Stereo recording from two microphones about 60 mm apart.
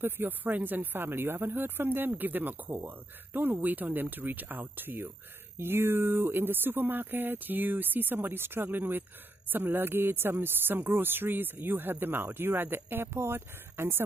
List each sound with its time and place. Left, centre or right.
0.0 s speech: right